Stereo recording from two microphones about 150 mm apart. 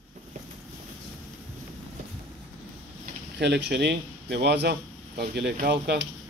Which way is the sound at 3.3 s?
90° right.